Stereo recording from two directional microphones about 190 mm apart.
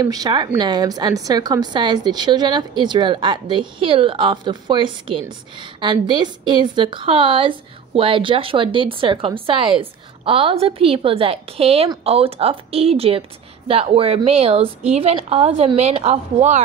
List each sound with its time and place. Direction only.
0.0 s a woman's voice: 20° right (ahead or behind); by 16.6 s 35° right (ahead or behind)